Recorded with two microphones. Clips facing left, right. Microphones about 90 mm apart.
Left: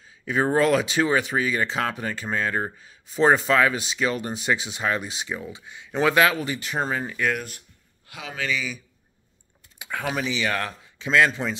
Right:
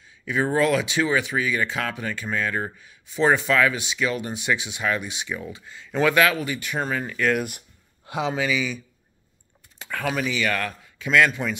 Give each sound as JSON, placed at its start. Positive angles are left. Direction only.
{"t": 0.2, "sound": "speech", "side_deg": 35}
{"t": 5.5, "sound": "speech", "side_deg": 15}
{"t": 7.3, "sound": "speech", "side_deg": -15}
{"t": 8.1, "sound": "speech", "side_deg": -25}
{"t": 8.4, "sound": "a man's voice", "side_deg": -5}
{"t": 9.8, "sound": "speech", "side_deg": 15}